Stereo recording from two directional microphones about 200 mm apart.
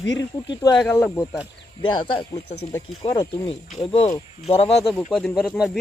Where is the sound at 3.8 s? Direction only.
25° left (ahead or behind).